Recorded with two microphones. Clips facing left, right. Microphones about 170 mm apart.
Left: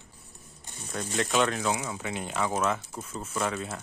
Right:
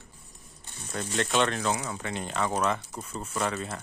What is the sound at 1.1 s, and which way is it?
Speech, 5° left (ahead or behind).